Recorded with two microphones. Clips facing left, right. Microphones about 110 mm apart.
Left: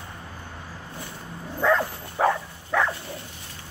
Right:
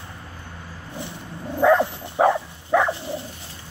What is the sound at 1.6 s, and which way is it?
Dog, 20° right (ahead or behind).